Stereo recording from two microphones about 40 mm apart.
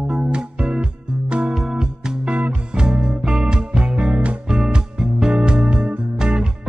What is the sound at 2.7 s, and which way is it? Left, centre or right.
Music, right.